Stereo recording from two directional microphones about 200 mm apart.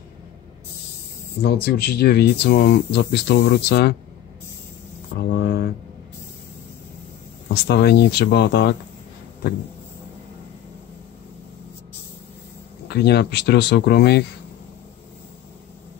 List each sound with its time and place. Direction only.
1.4 s speech: 50° left (ahead or behind)
5.2 s speech: 55° left (ahead or behind)
7.5 s speech: 55° left (ahead or behind)
12.8 s speech: 55° left (ahead or behind)